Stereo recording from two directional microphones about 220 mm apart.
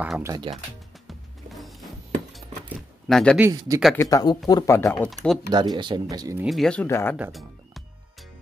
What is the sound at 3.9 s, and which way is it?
Speech, 15° left (ahead or behind).